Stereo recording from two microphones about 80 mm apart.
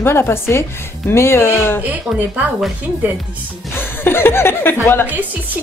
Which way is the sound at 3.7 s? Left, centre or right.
Left.